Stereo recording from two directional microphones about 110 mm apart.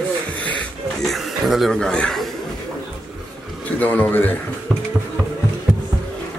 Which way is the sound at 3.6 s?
15° left (ahead or behind).